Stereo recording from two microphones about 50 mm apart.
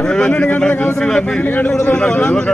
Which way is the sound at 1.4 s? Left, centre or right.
Left.